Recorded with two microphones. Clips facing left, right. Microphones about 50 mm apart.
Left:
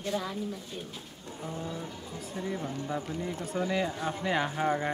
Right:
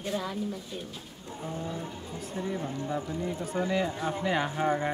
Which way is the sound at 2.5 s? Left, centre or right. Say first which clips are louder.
Right 1 dB; centre.